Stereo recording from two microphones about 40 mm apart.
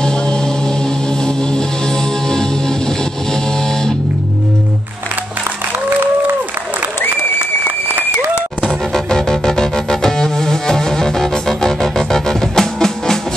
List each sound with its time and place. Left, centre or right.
0.0 s music: centre
8.6 s music: centre